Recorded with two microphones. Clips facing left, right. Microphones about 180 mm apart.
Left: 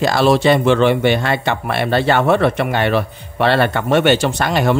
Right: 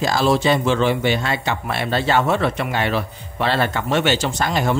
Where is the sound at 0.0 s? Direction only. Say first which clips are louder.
Left 4 dB; 65° left (ahead or behind).